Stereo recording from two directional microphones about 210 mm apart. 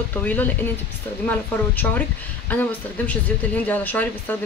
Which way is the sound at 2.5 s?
5° left (ahead or behind).